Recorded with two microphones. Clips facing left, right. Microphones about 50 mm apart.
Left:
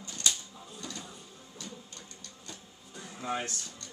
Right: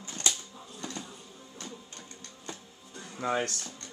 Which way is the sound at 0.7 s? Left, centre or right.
Right.